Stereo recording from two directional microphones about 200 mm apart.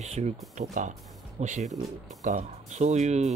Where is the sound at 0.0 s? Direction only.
35° right (ahead or behind).